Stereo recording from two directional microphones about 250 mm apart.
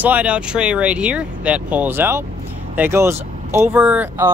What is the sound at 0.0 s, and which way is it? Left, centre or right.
Speech, centre.